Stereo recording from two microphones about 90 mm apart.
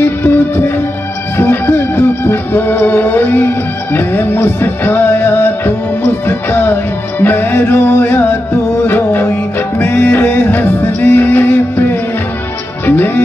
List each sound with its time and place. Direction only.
0.0 s music: 25° left (ahead or behind)